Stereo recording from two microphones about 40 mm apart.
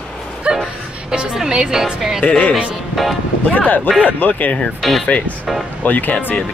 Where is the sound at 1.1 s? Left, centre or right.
Right.